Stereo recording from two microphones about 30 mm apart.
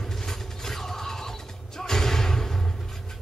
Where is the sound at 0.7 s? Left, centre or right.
Centre.